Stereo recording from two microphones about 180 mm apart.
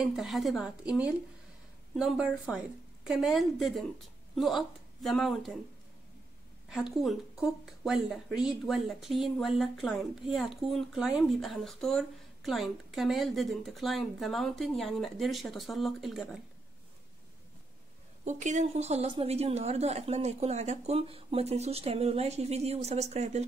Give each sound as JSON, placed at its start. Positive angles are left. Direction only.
{"t": 0.0, "sound": "speech", "side_deg": 0}
{"t": 6.7, "sound": "speech", "side_deg": 0}
{"t": 18.2, "sound": "a woman's voice", "side_deg": -40}